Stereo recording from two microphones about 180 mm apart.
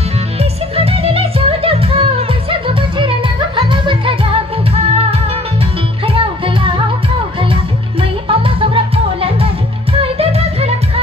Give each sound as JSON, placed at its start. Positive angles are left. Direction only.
{"t": 0.4, "sound": "music", "side_deg": -35}
{"t": 6.0, "sound": "music", "side_deg": -30}
{"t": 8.0, "sound": "music", "side_deg": -30}